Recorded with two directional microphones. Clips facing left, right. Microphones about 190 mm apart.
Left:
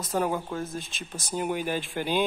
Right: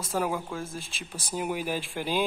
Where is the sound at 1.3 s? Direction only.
5° right (ahead or behind).